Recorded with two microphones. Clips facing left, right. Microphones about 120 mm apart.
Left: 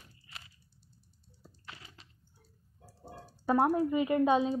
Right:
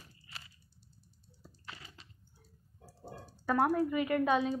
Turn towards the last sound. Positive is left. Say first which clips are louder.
# left 3 dB
turn(degrees=25)  # may be behind; listen again after turning